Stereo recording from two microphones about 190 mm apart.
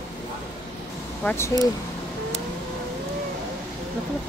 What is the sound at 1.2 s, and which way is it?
Speech, 15° left (ahead or behind).